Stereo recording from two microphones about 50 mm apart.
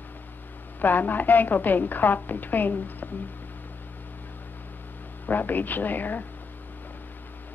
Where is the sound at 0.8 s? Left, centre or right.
Left.